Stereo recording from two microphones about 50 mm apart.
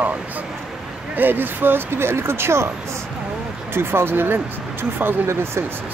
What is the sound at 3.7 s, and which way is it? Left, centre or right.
Speech, right.